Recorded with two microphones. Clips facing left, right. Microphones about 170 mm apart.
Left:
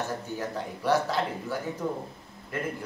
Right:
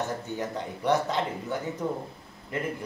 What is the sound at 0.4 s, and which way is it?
Speech, 20° right (ahead or behind).